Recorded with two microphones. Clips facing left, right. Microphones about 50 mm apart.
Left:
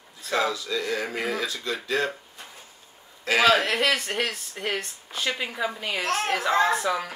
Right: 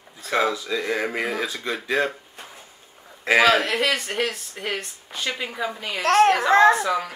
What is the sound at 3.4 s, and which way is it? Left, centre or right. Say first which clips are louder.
Speech: right 1 dB; centre.